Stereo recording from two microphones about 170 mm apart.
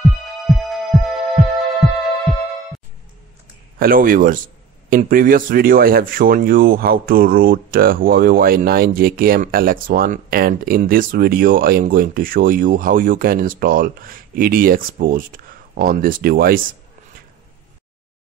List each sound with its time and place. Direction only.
0.5 s music: centre (ahead or behind)
3.8 s speech: 55° right (ahead or behind)